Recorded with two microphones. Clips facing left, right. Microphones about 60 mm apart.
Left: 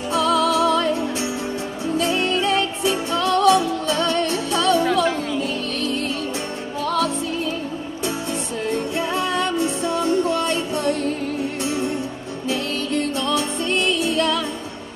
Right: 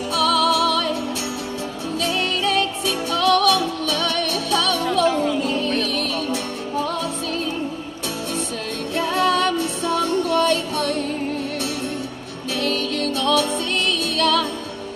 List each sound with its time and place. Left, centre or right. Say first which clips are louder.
0.1 s music: even; left
2.0 s music: left 2 dB; left
8.9 s music: right 3 dB; left
12.4 s music: right 1 dB; left